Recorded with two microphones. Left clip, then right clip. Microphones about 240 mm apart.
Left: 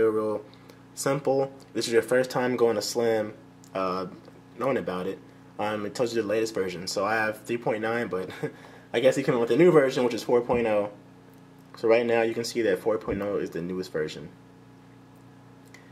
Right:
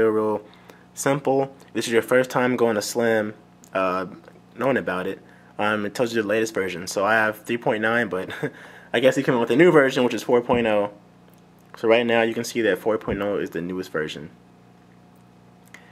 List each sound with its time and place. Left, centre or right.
0.0 s speech: centre